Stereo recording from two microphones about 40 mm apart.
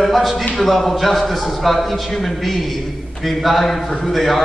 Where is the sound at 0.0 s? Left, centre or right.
Centre.